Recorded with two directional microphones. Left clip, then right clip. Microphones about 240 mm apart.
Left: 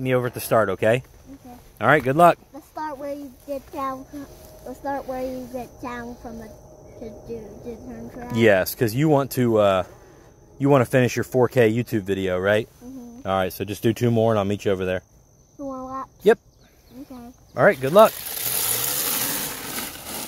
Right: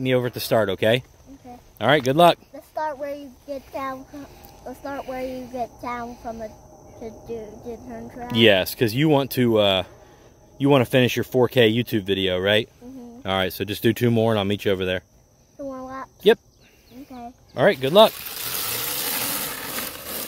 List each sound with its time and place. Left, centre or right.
0.0 s speech: centre
17.6 s speech: centre
18.4 s a sound: centre